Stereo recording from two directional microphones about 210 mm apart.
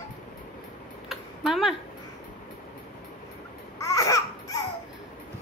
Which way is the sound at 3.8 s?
15° left (ahead or behind).